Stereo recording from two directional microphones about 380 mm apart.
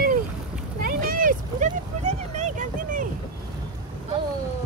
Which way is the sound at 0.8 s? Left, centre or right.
Right.